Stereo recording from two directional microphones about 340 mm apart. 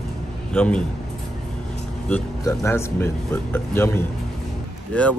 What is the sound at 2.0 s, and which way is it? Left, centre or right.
Speech, centre.